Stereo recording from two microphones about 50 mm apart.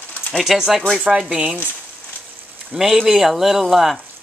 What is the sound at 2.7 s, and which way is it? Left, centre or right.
Speech, centre.